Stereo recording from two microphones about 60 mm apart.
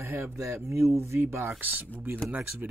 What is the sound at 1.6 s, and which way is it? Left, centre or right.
Speech, right.